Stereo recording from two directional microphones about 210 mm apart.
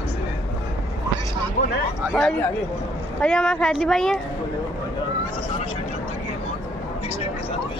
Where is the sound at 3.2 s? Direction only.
5° left (ahead or behind).